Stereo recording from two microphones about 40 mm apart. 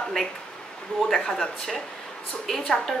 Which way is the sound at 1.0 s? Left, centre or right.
Centre.